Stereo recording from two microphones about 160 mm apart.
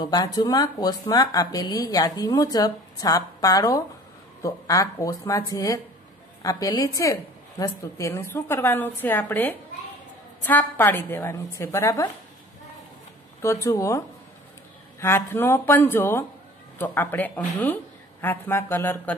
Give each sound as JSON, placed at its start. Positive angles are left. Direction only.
{"t": 0.0, "sound": "a woman's voice", "side_deg": 25}
{"t": 13.4, "sound": "a woman's voice", "side_deg": 15}